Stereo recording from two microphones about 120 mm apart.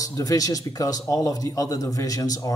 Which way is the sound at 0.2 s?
30° left (ahead or behind).